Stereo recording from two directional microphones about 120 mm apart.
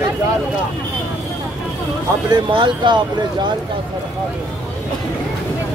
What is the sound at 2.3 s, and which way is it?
Speech, 40° right (ahead or behind).